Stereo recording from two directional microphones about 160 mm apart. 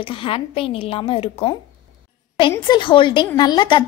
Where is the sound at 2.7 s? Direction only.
30° left (ahead or behind).